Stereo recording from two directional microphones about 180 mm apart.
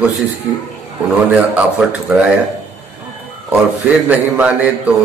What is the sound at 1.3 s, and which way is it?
A man's voice, 10° right (ahead or behind).